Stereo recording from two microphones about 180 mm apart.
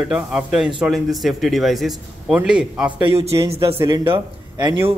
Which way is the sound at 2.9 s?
35° right (ahead or behind).